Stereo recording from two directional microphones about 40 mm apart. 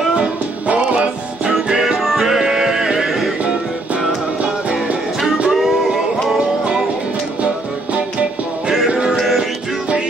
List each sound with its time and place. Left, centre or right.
1.4 s music: centre
5.5 s music: centre
9.1 s music: centre